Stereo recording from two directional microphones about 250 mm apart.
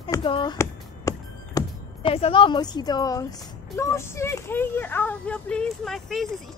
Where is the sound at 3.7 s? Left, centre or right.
Centre.